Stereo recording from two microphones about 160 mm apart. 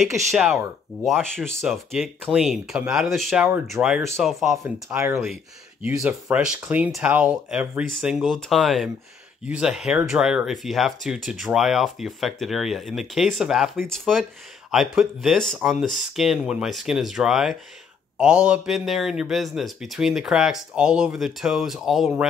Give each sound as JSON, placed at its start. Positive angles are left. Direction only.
{"t": 0.3, "sound": "speech", "side_deg": -5}
{"t": 4.8, "sound": "speech", "side_deg": -15}
{"t": 5.2, "sound": "speech", "side_deg": 0}
{"t": 5.9, "sound": "speech", "side_deg": -15}